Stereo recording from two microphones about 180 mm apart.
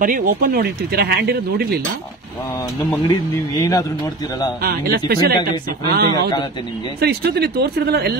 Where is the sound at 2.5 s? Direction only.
15° left (ahead or behind).